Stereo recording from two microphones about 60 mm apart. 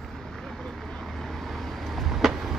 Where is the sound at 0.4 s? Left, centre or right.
Centre.